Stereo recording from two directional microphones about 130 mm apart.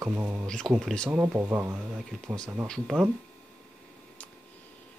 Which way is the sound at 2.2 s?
5° left (ahead or behind).